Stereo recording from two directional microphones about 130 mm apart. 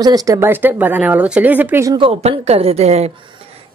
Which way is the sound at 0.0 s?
25° right (ahead or behind).